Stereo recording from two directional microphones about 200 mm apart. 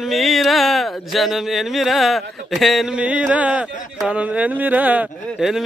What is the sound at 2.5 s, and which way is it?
Speech, centre (ahead or behind).